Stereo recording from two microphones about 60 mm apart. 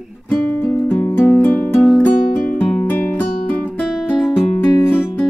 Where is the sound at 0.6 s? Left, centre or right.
Left.